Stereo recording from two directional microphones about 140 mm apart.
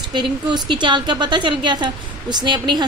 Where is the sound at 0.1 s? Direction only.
35° right (ahead or behind).